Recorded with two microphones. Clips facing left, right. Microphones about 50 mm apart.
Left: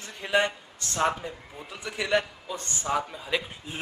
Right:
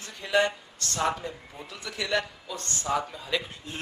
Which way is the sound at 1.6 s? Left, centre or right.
Centre.